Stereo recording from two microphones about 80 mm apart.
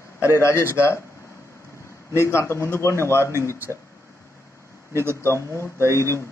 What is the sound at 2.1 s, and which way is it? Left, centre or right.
A man's voice, left.